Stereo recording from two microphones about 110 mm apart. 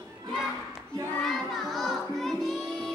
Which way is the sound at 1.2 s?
Centre (ahead or behind).